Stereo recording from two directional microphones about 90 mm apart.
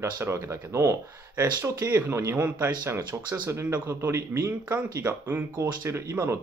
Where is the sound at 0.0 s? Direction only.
30° right (ahead or behind).